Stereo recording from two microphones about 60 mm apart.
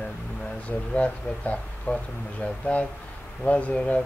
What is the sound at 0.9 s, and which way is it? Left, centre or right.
Speech, left.